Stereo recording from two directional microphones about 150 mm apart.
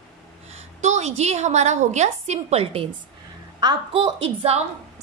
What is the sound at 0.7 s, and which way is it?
A woman's voice, 50° right (ahead or behind).